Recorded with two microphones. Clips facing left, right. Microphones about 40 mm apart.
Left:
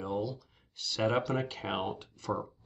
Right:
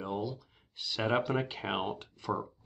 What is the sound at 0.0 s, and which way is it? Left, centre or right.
Speech, centre.